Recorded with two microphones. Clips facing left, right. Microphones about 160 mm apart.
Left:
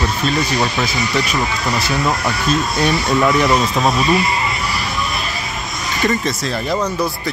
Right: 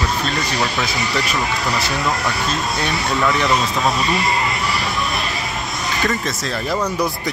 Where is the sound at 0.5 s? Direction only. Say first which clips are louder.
Left 3 dB; 20° left (ahead or behind).